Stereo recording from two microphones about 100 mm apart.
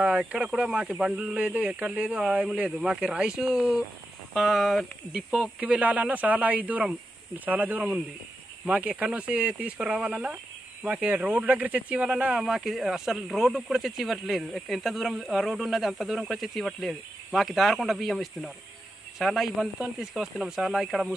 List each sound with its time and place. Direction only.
0.0 s speech: 10° right (ahead or behind)
5.3 s speech: 10° right (ahead or behind)